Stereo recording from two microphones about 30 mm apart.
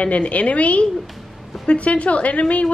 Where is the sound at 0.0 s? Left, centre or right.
Left.